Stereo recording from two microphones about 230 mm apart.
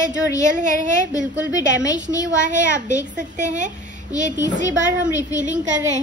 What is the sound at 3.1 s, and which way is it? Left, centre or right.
Speech, right.